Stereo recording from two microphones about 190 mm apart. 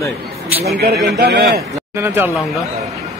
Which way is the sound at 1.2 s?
55° right (ahead or behind).